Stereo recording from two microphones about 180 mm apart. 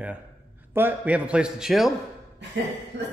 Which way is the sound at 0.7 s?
10° right (ahead or behind).